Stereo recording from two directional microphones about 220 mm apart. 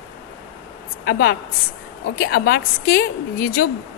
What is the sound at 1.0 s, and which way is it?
A woman's voice, 45° left (ahead or behind).